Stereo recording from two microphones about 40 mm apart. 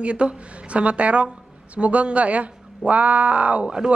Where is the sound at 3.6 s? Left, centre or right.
Centre.